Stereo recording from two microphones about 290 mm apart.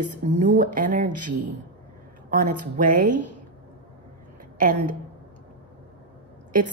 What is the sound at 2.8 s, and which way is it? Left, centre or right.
Speech, right.